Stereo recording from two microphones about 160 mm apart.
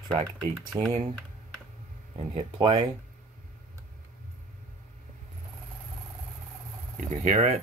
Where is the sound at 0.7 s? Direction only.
20° right (ahead or behind).